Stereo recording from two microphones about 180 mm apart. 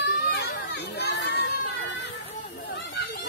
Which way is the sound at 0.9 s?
60° left (ahead or behind).